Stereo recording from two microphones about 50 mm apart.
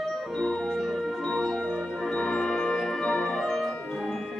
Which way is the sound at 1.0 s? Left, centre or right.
Centre.